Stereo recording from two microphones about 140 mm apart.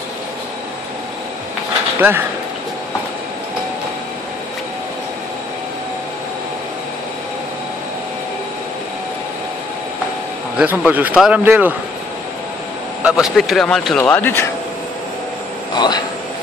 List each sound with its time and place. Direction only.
2.0 s speech: 15° right (ahead or behind)
10.6 s speech: 10° right (ahead or behind)
13.0 s a man's voice: 5° right (ahead or behind); by 14.4 s 15° left (ahead or behind)
15.7 s speech: 30° left (ahead or behind)